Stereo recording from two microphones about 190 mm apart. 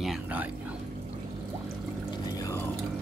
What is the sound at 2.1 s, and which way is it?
Pour, 20° left (ahead or behind).